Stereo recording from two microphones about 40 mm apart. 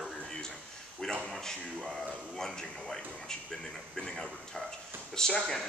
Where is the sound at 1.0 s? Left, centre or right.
Centre.